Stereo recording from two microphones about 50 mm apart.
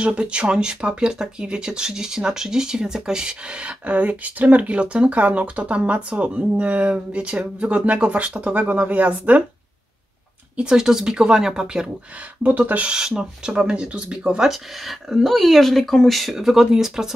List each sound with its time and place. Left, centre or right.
0.0 s speech: right
10.5 s speech: centre
12.4 s speech: right
12.8 s speech: centre
14.4 s speech: centre